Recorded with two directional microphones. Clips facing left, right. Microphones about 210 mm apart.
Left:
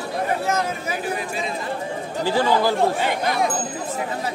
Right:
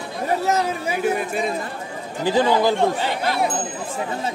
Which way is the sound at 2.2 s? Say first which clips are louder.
Right 2 dB; 15° right (ahead or behind).